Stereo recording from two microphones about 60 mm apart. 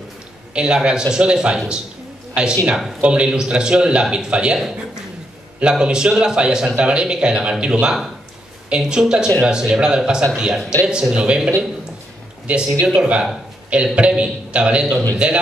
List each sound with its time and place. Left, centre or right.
0.6 s a man's voice: centre